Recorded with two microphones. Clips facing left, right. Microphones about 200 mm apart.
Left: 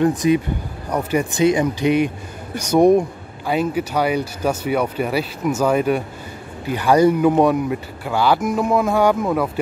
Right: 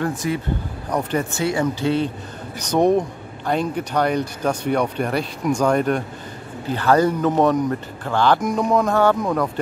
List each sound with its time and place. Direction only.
0.0 s a man's voice: 20° left (ahead or behind)